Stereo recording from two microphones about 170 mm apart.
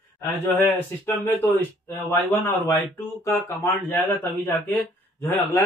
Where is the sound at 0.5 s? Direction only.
10° left (ahead or behind).